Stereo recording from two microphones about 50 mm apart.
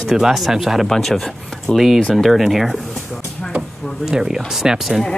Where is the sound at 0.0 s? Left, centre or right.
Centre.